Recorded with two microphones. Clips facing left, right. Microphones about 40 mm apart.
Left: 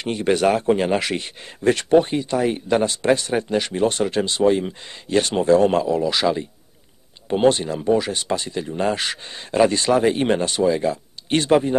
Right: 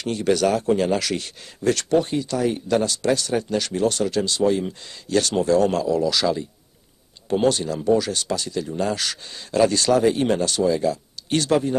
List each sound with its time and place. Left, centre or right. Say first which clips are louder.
0.0 s speech: left 2 dB; left